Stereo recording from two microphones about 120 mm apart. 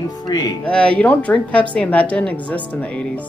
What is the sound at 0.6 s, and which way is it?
Speech, 10° left (ahead or behind).